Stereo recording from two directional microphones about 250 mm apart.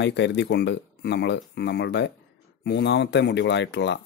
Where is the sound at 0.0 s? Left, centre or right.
Left.